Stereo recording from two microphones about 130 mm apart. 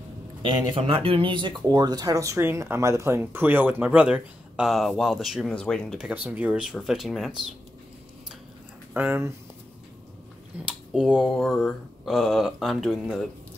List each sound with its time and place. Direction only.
0.5 s speech: 45° right (ahead or behind); by 5.9 s 5° left (ahead or behind)
5.9 s speech: 10° right (ahead or behind)
8.9 s speech: 15° right (ahead or behind)
10.6 s speech: 5° right (ahead or behind)